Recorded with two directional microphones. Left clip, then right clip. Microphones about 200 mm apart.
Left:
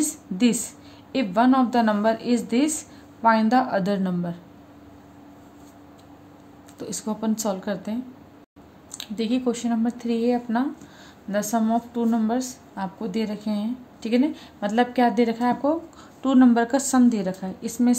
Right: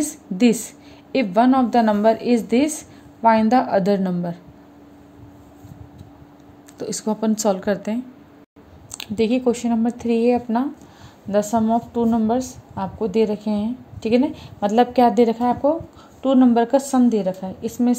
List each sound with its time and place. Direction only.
0.0 s a woman's voice: 20° right (ahead or behind)
6.8 s a woman's voice: 25° right (ahead or behind)